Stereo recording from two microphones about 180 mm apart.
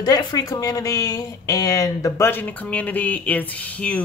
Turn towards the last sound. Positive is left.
turn(degrees=10)  # may be behind; listen again after turning